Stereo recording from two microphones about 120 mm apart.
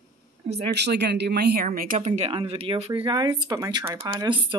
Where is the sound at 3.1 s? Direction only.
35° right (ahead or behind).